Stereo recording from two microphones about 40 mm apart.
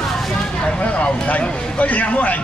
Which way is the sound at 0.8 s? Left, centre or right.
Left.